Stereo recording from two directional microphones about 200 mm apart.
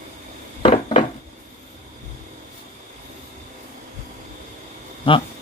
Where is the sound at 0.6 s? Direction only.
30° left (ahead or behind).